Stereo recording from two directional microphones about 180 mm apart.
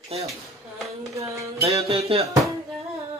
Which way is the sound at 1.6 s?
35° right (ahead or behind).